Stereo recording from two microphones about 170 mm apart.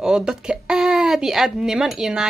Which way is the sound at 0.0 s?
5° right (ahead or behind).